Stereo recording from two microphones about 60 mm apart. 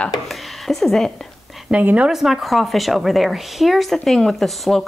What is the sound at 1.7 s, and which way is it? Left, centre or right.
Speech, right.